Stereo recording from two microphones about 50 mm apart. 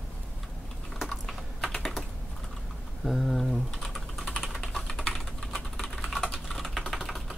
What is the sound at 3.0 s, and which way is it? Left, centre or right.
Typing, centre.